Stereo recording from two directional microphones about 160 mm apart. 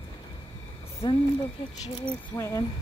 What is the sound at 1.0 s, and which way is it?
Speech, 30° left (ahead or behind).